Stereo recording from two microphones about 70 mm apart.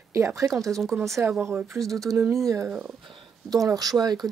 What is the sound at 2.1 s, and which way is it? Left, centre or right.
Speech, right.